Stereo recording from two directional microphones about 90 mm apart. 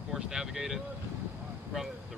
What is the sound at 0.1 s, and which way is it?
Boat, 5° right (ahead or behind).